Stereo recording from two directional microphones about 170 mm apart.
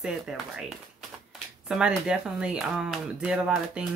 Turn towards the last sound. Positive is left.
turn(degrees=-5)  # may be behind; listen again after turning